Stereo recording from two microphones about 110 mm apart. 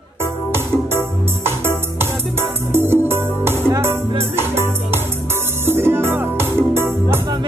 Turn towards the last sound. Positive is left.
turn(degrees=-20)  # may be behind; listen again after turning